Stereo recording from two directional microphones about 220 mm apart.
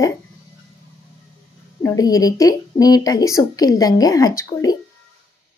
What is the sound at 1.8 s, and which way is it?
A woman's voice, 15° left (ahead or behind).